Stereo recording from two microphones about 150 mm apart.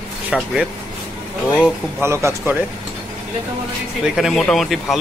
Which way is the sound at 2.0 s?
20° right (ahead or behind).